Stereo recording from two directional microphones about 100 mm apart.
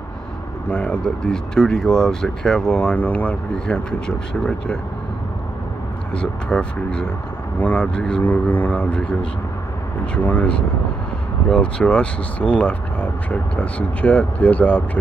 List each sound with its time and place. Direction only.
0.7 s speech: 10° left (ahead or behind)
6.1 s speech: 10° left (ahead or behind)